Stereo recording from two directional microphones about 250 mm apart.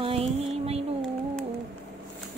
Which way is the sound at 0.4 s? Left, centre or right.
Right.